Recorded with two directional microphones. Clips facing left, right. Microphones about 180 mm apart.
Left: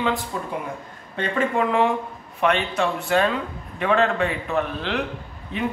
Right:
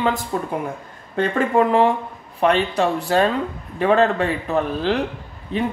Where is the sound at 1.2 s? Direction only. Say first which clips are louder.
Right 5 dB; 40° right (ahead or behind).